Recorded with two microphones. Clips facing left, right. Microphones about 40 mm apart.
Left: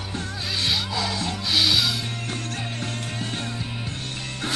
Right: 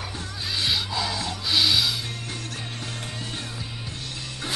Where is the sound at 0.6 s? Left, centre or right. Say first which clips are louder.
Left 1 dB; centre.